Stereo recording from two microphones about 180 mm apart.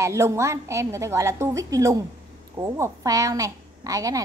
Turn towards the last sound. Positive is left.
turn(degrees=-20)  # may be behind; listen again after turning